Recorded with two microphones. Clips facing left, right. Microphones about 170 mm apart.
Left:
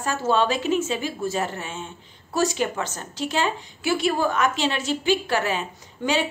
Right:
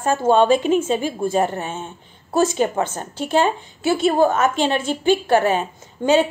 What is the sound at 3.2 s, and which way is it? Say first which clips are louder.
A woman's voice: right 6 dB; 50° right (ahead or behind).